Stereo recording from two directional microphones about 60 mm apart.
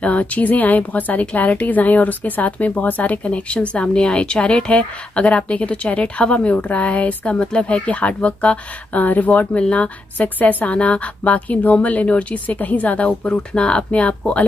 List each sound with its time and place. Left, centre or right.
0.0 s speech: left